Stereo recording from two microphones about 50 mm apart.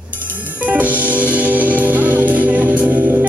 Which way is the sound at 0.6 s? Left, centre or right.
Right.